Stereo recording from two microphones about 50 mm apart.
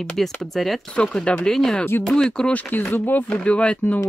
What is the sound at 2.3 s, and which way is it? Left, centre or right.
Speech, centre.